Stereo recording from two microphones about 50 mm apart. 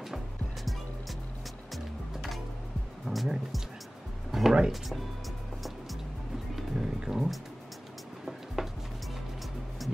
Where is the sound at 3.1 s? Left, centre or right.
Right.